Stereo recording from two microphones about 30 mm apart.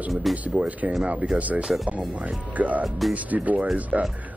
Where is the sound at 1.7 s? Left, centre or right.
Centre.